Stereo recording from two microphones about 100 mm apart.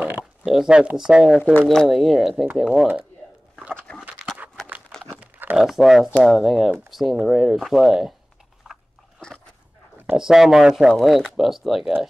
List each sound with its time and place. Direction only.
0.5 s speech: 5° right (ahead or behind)
1.4 s speech: 15° left (ahead or behind)
1.7 s speech: centre (ahead or behind)
3.9 s a sound: 15° left (ahead or behind)
5.1 s crumpling: 20° right (ahead or behind)
5.6 s speech: centre (ahead or behind)
8.6 s biting: 10° right (ahead or behind)
10.1 s speech: 5° right (ahead or behind)